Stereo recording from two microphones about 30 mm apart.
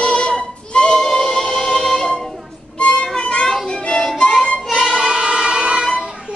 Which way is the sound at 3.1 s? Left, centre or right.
Left.